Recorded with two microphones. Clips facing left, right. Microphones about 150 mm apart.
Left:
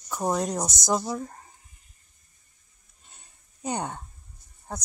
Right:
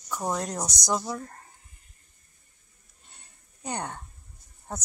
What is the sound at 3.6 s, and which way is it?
Speech, 15° left (ahead or behind).